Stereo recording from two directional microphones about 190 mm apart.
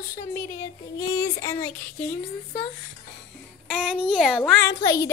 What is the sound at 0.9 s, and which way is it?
A woman's voice, 20° left (ahead or behind).